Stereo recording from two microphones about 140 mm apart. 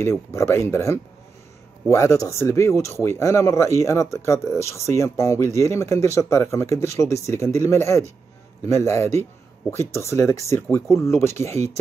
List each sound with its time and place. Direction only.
0.0 s speech: 20° left (ahead or behind)
11.5 s speech: 50° right (ahead or behind)